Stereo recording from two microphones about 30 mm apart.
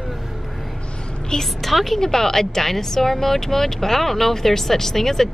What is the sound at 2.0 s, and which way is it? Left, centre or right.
Speech, centre.